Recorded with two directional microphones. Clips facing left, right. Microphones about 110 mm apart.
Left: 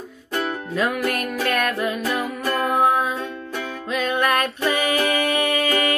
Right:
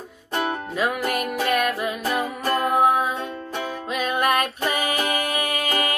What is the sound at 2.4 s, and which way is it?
Music, 35° right (ahead or behind).